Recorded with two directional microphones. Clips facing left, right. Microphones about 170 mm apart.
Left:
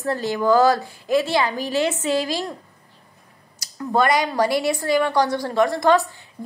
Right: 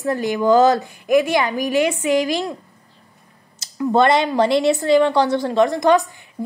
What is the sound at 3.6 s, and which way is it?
A woman's voice, 25° right (ahead or behind).